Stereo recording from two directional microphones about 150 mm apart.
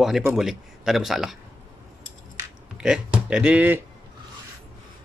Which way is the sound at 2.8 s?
5° right (ahead or behind).